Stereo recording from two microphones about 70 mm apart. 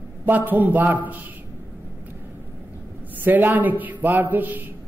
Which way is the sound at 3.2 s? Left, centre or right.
Right.